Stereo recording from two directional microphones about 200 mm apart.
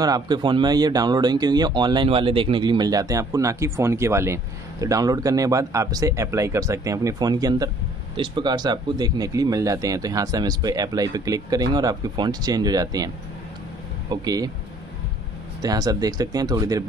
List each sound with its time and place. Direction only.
0.0 s speech: 20° right (ahead or behind)
14.1 s speech: 20° right (ahead or behind)
15.6 s speech: 20° right (ahead or behind)